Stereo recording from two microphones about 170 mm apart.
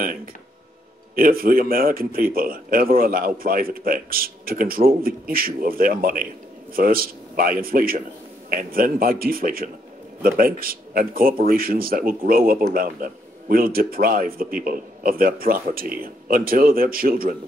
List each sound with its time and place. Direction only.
1.1 s speech: 60° right (ahead or behind)